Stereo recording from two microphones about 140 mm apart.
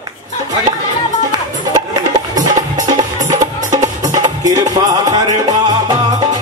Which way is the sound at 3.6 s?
60° right (ahead or behind).